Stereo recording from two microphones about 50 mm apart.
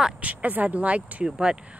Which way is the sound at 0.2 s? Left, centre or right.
Right.